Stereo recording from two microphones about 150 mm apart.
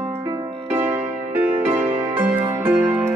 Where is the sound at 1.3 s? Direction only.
10° right (ahead or behind).